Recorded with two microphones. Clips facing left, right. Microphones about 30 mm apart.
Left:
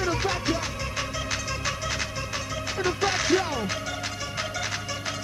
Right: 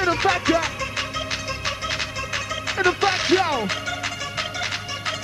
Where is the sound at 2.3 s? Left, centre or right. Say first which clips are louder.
Right 5 dB; right.